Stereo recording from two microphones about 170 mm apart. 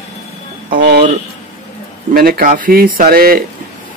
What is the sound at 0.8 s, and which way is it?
Speech, 75° right (ahead or behind).